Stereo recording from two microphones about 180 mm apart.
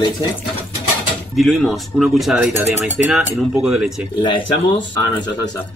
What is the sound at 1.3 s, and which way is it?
Speech, centre (ahead or behind).